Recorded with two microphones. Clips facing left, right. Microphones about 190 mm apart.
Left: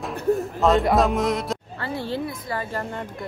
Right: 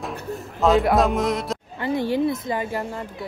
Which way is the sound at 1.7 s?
15° right (ahead or behind).